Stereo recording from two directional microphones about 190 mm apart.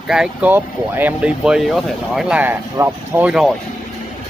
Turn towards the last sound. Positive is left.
turn(degrees=-5)  # may be behind; listen again after turning